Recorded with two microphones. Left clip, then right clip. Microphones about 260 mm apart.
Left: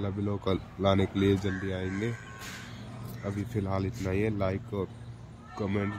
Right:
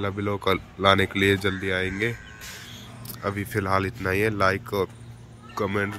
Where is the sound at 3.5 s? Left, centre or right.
Centre.